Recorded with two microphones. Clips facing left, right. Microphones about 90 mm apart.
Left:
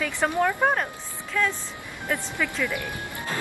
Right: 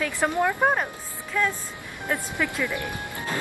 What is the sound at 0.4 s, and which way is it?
Speech, 15° right (ahead or behind).